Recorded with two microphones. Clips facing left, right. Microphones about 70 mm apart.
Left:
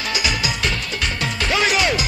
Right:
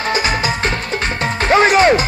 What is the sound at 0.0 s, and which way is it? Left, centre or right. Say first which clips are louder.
Music: right 6 dB; right.